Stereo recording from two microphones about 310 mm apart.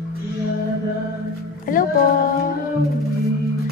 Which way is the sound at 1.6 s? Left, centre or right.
Left.